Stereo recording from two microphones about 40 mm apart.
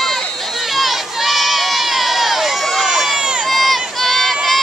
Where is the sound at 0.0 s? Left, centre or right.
Centre.